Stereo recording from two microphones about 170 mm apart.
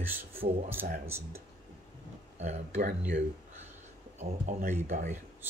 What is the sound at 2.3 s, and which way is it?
Speech, 40° right (ahead or behind).